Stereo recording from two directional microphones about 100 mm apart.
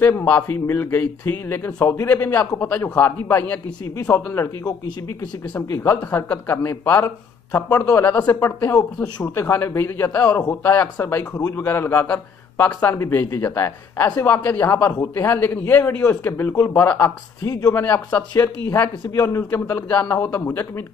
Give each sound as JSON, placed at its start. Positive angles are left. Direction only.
{"t": 0.0, "sound": "speech", "side_deg": 20}
{"t": 4.6, "sound": "speech", "side_deg": 45}
{"t": 5.8, "sound": "speech", "side_deg": 25}
{"t": 12.6, "sound": "speech", "side_deg": 30}
{"t": 17.4, "sound": "speech", "side_deg": 35}
{"t": 17.8, "sound": "speech", "side_deg": 20}
{"t": 18.4, "sound": "speech", "side_deg": 35}